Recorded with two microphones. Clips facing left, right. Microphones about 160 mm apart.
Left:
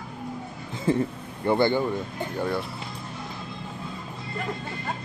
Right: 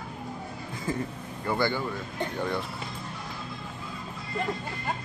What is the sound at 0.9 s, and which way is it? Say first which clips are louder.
Speech: left 8 dB; 30° left (ahead or behind).